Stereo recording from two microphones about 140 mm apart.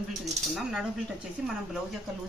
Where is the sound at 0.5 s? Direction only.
Centre (ahead or behind).